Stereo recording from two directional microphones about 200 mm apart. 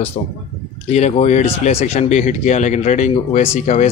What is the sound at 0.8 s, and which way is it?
Speech, 35° left (ahead or behind).